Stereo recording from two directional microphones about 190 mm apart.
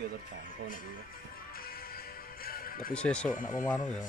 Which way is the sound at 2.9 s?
5° left (ahead or behind).